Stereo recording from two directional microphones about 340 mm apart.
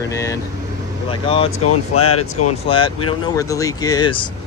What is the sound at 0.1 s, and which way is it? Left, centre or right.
Speech, centre.